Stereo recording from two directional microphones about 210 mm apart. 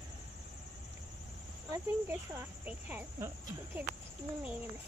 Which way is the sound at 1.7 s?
10° right (ahead or behind).